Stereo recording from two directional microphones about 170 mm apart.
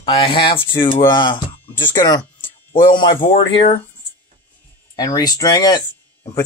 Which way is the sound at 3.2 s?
35° left (ahead or behind).